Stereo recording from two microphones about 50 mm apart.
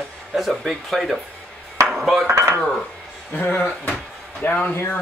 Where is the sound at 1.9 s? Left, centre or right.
Centre.